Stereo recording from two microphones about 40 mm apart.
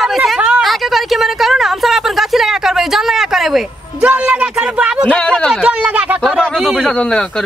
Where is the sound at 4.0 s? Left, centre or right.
Right.